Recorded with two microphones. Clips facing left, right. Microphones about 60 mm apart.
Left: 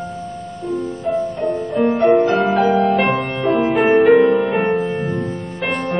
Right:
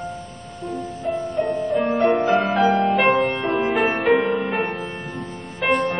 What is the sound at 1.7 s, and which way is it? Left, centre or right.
Music, centre.